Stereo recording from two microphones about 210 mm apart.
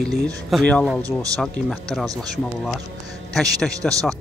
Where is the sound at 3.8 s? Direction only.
Centre (ahead or behind).